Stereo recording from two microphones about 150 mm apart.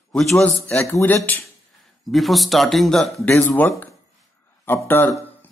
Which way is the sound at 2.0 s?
Centre (ahead or behind).